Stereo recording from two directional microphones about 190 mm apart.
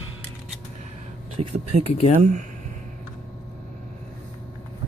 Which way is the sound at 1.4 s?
30° right (ahead or behind).